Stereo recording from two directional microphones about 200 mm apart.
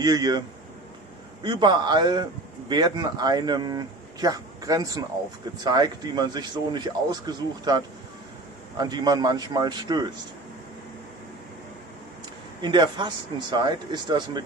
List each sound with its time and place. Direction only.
0.0 s speech: 20° right (ahead or behind)
1.4 s speech: 20° right (ahead or behind)
12.6 s speech: 25° right (ahead or behind)